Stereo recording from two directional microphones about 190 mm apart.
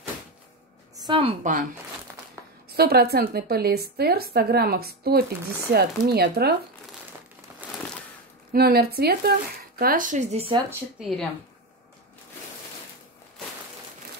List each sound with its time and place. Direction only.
0.9 s a sound: 25° right (ahead or behind)
1.4 s speech: 40° right (ahead or behind)
2.4 s a sound: 15° right (ahead or behind)
2.7 s a woman's voice: 55° right (ahead or behind)
8.5 s speech: 55° right (ahead or behind); by 10.6 s 30° right (ahead or behind)
11.0 s speech: centre (ahead or behind)